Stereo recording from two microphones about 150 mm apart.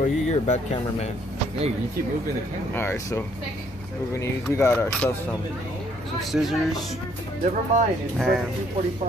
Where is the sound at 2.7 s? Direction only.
15° left (ahead or behind).